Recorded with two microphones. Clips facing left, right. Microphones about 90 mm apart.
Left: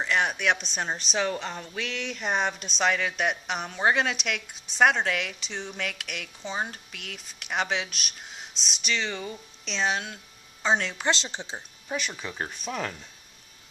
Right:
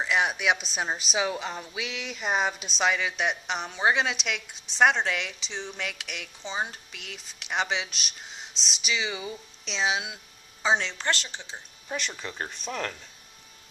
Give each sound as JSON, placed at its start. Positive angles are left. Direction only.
{"t": 0.0, "sound": "a woman's voice", "side_deg": 0}
{"t": 11.0, "sound": "a woman's voice", "side_deg": 20}
{"t": 11.9, "sound": "a woman's voice", "side_deg": 5}